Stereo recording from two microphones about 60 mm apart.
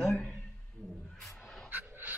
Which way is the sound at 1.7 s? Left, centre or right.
Right.